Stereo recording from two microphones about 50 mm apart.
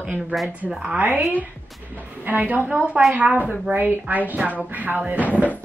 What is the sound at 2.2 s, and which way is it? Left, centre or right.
Speech, right.